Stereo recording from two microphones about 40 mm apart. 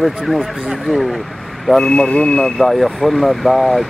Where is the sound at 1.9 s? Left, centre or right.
Left.